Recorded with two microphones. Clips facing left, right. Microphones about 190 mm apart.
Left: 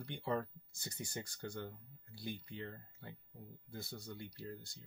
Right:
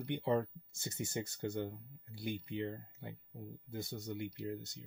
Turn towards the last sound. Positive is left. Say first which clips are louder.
# right 7 dB
turn(degrees=-20)  # may be behind; listen again after turning